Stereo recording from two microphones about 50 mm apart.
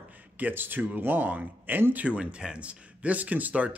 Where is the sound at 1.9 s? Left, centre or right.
Right.